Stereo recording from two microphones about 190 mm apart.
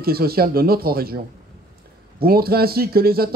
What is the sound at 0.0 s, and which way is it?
Speech, 55° right (ahead or behind).